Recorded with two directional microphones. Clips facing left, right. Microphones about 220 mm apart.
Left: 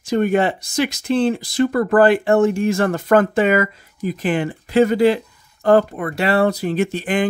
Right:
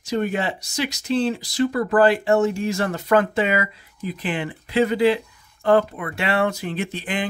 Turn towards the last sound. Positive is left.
turn(degrees=45)  # may be behind; listen again after turning